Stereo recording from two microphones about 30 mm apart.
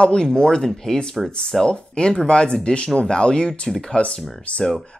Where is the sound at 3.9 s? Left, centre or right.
Left.